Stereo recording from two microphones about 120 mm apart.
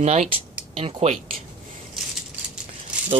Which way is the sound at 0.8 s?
60° right (ahead or behind).